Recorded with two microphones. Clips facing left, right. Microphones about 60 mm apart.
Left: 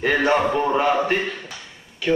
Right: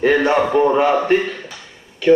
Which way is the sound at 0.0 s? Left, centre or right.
Centre.